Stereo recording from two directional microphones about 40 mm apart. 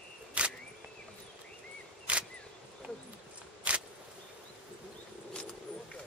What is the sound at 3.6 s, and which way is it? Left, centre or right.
Insect, right.